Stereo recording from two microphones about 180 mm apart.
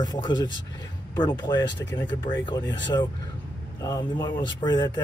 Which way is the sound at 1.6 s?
80° left.